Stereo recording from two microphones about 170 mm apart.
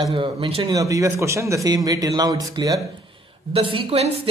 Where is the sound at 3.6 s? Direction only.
35° right (ahead or behind).